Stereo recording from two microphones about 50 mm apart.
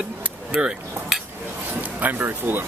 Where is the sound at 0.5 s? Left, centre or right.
Centre.